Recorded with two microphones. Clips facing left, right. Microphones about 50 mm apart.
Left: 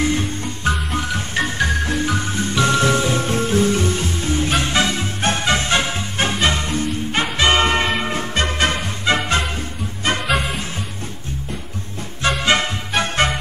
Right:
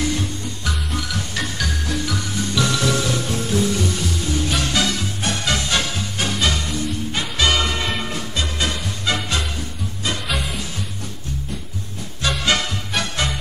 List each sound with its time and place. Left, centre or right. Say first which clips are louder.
0.0 s music: left 3 dB; left
10.2 s music: left 5 dB; centre
12.2 s music: left 3 dB; left